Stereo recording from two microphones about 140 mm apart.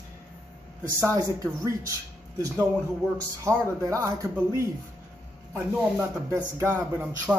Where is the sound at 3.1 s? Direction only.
20° right (ahead or behind).